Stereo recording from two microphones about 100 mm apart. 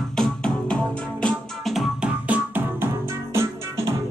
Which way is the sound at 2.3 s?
20° right (ahead or behind).